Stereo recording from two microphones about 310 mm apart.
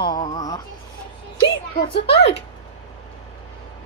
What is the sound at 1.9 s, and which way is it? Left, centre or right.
Speech, centre.